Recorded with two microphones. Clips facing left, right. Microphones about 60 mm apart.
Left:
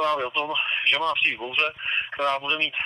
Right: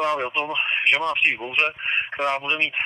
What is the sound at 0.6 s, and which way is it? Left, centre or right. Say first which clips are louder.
Speech: right 5 dB; right.